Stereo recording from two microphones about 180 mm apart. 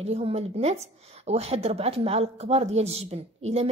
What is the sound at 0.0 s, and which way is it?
Speech, 35° right (ahead or behind).